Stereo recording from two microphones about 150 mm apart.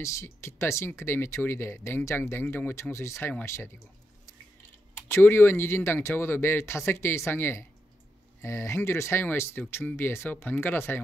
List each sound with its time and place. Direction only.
0.0 s speech: 20° left (ahead or behind)
5.0 s speech: 15° left (ahead or behind)